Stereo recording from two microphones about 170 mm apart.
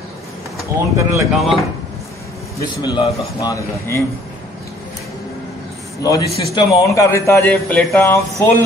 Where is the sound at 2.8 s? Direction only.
20° left (ahead or behind).